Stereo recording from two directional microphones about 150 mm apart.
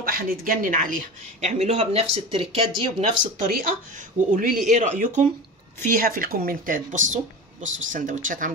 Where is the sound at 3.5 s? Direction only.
70° right (ahead or behind).